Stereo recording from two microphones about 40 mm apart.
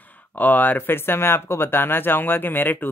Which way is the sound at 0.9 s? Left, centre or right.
Left.